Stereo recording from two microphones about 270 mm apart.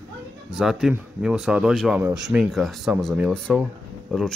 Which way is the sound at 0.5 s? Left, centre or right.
Centre.